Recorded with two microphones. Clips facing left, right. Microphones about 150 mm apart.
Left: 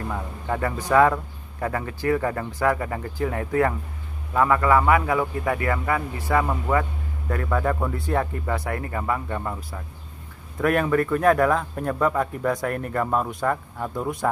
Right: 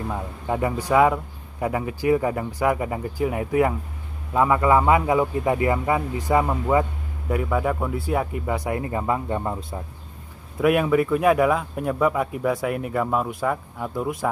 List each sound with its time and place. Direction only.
0.1 s a man's voice: 15° right (ahead or behind)
10.6 s a man's voice: 10° right (ahead or behind)